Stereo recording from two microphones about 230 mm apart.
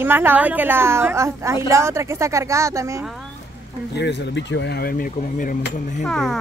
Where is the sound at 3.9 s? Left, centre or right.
Left.